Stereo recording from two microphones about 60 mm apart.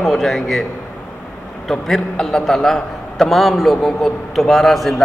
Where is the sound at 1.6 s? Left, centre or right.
Centre.